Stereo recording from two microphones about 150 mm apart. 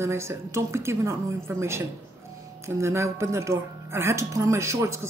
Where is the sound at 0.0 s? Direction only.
15° right (ahead or behind).